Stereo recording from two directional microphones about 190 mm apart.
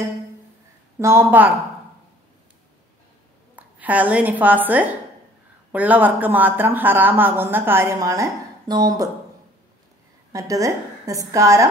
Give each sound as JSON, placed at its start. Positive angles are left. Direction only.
{"t": 0.9, "sound": "a man's voice", "side_deg": -15}
{"t": 3.5, "sound": "a woman's voice", "side_deg": -10}
{"t": 10.3, "sound": "a man's voice", "side_deg": -15}